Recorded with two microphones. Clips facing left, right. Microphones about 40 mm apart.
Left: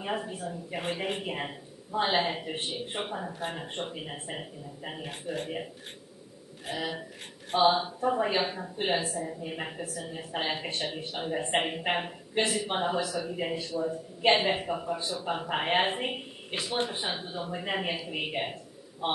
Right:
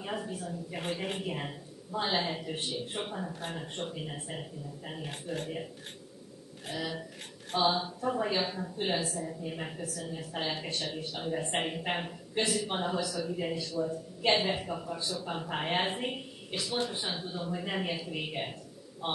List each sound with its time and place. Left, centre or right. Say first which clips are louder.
0.0 s a woman's voice: left 3 dB; left
5.0 s speech: left 2 dB; centre
5.4 s a woman's voice: left 2 dB; left